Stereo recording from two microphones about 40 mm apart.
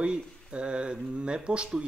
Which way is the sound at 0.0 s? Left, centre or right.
Right.